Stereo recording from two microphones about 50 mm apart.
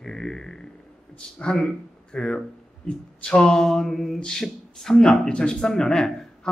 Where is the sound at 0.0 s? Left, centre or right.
Centre.